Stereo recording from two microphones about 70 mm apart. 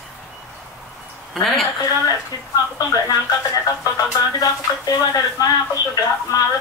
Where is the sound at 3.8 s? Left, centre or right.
Left.